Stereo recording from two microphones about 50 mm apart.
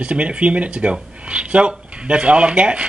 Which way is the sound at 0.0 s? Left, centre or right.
Right.